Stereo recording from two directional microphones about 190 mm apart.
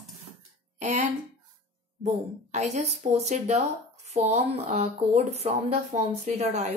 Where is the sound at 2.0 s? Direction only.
35° right (ahead or behind).